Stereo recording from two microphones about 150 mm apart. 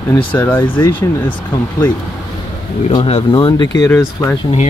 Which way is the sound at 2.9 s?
35° left (ahead or behind).